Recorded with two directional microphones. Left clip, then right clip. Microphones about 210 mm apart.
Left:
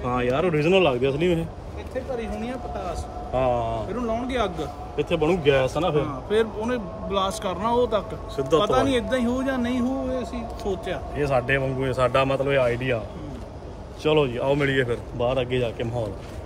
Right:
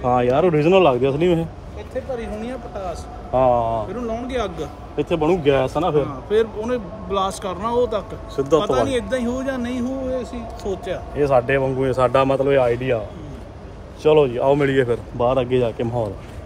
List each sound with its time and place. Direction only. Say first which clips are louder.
0.0 s a man's voice: right 7 dB; 5° right (ahead or behind)
2.1 s speech: right 2 dB; 15° left (ahead or behind)
3.3 s speech: right 6 dB; 10° right (ahead or behind)
3.9 s speech: right 1 dB; 30° left (ahead or behind)
4.9 s a man's voice: right 3 dB; 5° right (ahead or behind)
6.0 s speech: right 4 dB; 20° left (ahead or behind)
8.4 s a man's voice: right 3 dB; centre (ahead or behind)
8.6 s speech: right 2 dB; 30° left (ahead or behind)
10.3 s speech: right 2 dB; 10° left (ahead or behind)
11.1 s a man's voice: right 6 dB; 10° right (ahead or behind)
14.0 s speech: right 6 dB; centre (ahead or behind); by 16.1 s 15° right (ahead or behind)